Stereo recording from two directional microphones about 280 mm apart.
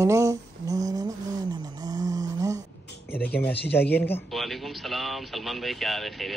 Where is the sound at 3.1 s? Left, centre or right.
Centre.